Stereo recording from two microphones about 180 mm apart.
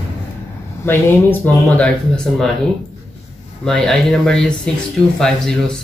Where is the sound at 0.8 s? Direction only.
10° left (ahead or behind).